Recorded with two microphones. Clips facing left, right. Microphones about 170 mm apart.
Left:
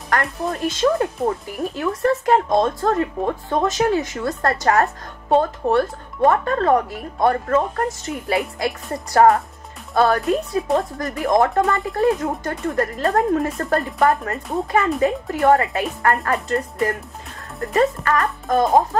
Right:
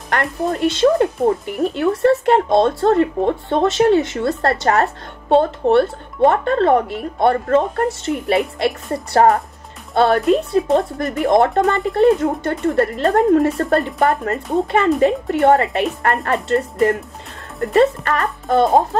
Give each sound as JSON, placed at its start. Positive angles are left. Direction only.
{"t": 0.1, "sound": "speech", "side_deg": -30}